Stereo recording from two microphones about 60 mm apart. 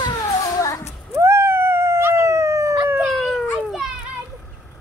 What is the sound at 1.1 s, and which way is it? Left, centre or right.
Howl, right.